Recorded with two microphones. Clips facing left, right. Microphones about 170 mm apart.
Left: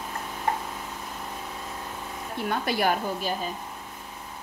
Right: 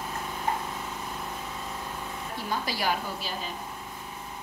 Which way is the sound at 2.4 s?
55° left (ahead or behind).